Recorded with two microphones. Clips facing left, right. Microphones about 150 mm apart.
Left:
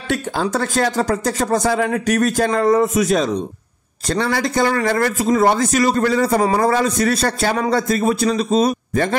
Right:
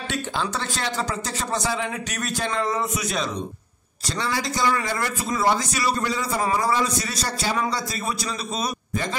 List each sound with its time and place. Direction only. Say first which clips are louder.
0.1 s speech: left 8 dB; 45° left (ahead or behind)
4.1 s a man's voice: left 8 dB; 50° left (ahead or behind); by 8.6 s 35° left (ahead or behind)